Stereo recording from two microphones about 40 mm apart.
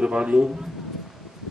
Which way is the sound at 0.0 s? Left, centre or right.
Right.